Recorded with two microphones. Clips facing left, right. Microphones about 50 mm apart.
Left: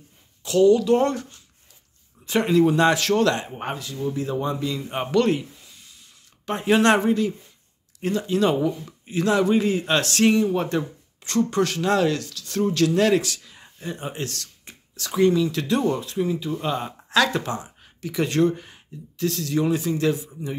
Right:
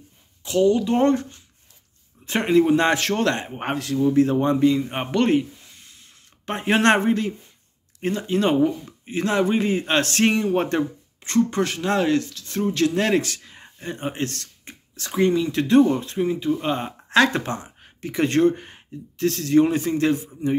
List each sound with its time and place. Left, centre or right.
0.4 s speech: centre
2.2 s speech: right
3.7 s a man's voice: right
4.6 s speech: right
6.4 s speech: right
11.2 s speech: right